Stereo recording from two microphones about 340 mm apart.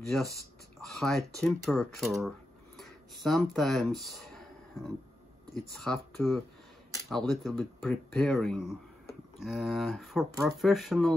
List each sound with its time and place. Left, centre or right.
0.0 s speech: centre